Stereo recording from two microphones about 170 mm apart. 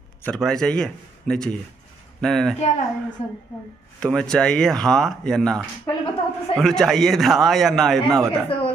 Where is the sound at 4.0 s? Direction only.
5° left (ahead or behind).